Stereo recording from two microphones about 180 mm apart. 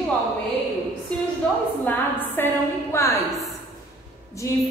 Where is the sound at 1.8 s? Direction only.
10° left (ahead or behind).